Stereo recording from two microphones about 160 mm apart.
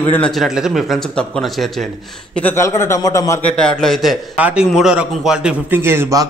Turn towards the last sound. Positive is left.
turn(degrees=-20)  # may be behind; listen again after turning